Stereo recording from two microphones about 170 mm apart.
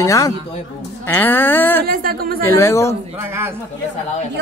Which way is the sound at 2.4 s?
15° left (ahead or behind).